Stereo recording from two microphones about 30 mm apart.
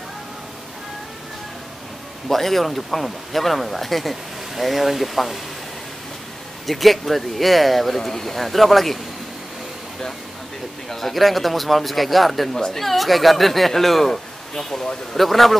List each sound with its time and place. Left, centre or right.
2.2 s speech: centre
6.6 s speech: centre
10.9 s speech: centre
12.5 s speech: centre
12.8 s speech: centre